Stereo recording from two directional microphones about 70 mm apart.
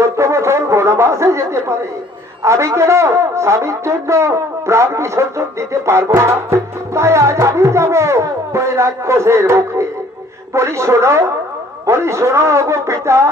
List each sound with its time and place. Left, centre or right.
0.0 s brass instrument: right
2.4 s a man's voice: right